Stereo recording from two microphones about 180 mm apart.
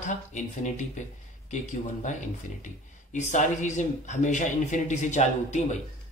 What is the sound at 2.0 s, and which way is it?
Speech, 40° left (ahead or behind).